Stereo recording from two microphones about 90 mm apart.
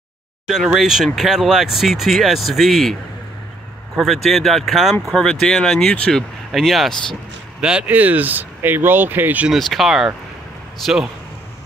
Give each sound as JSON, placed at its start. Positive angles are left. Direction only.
{"t": 0.7, "sound": "speech", "side_deg": 0}
{"t": 6.5, "sound": "speech", "side_deg": 0}
{"t": 7.6, "sound": "speech", "side_deg": -15}
{"t": 9.5, "sound": "speech", "side_deg": 0}